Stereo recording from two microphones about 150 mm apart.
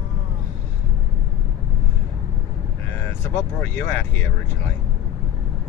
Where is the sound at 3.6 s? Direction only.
10° left (ahead or behind).